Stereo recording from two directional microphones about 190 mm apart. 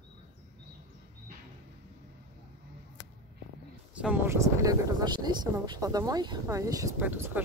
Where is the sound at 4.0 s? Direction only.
5° right (ahead or behind).